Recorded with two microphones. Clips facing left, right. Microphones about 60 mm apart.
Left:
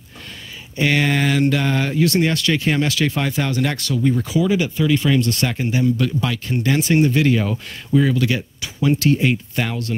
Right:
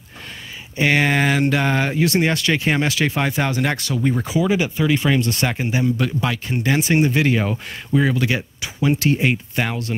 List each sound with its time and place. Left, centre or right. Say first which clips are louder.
0.7 s speech: right 1 dB; right